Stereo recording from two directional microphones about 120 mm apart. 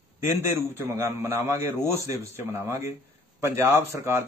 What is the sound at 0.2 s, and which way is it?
A man's voice, 20° right (ahead or behind).